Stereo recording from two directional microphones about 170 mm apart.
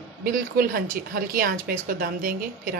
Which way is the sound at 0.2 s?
60° right (ahead or behind).